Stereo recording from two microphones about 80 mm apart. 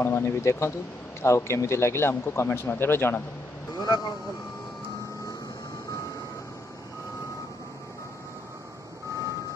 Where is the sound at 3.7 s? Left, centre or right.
Left.